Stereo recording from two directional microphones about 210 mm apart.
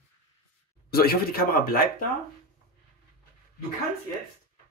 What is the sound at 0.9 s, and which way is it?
Speech, 45° left (ahead or behind).